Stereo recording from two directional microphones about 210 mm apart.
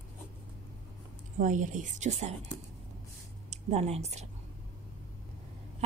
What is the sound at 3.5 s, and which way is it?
Speech, 30° right (ahead or behind).